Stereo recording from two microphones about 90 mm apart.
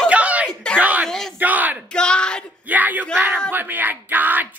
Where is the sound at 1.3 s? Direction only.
20° right (ahead or behind).